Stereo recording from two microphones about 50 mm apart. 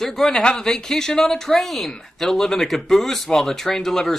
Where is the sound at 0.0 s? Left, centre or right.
Centre.